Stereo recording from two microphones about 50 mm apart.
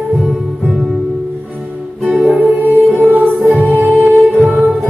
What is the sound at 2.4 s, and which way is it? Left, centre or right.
Music, right.